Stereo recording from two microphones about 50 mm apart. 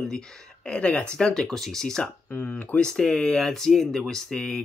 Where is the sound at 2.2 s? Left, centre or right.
Left.